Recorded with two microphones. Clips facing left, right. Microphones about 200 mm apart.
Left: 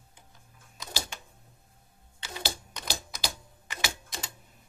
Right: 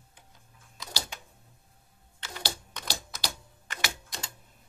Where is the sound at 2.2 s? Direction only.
15° left (ahead or behind).